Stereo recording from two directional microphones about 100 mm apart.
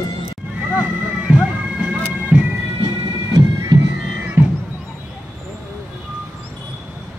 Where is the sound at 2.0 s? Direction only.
15° right (ahead or behind).